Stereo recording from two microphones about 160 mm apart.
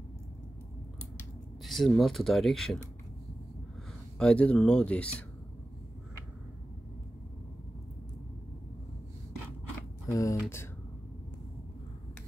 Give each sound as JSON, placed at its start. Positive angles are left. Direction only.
{"t": 1.6, "sound": "speech", "side_deg": 0}
{"t": 4.2, "sound": "speech", "side_deg": 5}
{"t": 10.0, "sound": "speech", "side_deg": 20}